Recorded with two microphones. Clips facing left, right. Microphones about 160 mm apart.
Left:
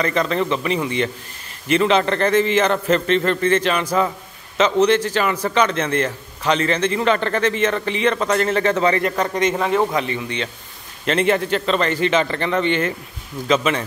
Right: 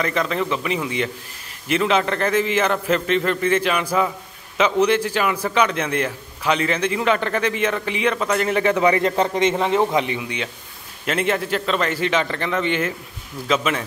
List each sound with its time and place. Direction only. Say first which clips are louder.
0.0 s a man's voice: left 2 dB; centre (ahead or behind)
9.4 s a man's voice: left 1 dB; 25° right (ahead or behind); by 13.8 s centre (ahead or behind)